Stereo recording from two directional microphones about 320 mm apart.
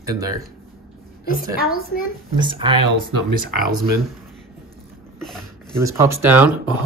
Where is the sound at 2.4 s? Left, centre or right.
Centre.